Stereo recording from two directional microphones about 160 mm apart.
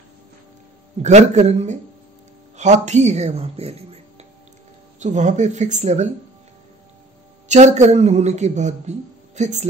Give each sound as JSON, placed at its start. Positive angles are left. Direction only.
{"t": 1.0, "sound": "speech", "side_deg": -45}
{"t": 7.4, "sound": "speech", "side_deg": -45}